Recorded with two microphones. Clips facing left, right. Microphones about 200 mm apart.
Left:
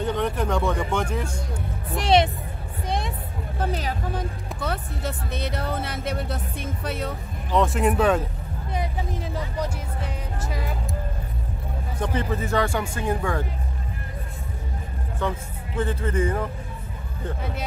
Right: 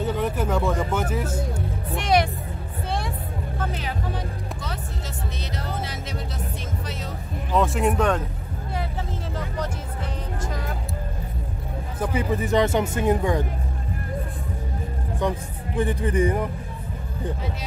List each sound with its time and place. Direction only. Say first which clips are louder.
0.0 s speech: even; 5° right (ahead or behind)
2.0 s speech: left 2 dB; 30° left (ahead or behind)
3.5 s speech: left 4 dB; 35° left (ahead or behind); by 7.2 s 60° left (ahead or behind)
7.5 s speech: even; centre (ahead or behind)
12.0 s speech: right 2 dB; 10° right (ahead or behind)
15.1 s speech: right 2 dB; 15° right (ahead or behind)